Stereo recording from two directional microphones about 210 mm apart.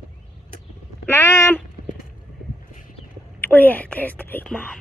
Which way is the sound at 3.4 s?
10° left (ahead or behind).